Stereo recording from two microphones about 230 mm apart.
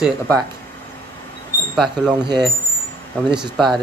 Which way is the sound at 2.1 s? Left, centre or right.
Centre.